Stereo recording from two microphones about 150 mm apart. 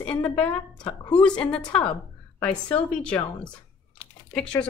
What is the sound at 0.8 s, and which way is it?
Speech, 35° left (ahead or behind).